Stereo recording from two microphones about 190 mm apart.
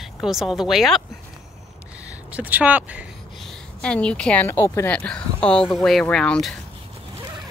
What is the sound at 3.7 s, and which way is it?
A woman's voice, 5° left (ahead or behind).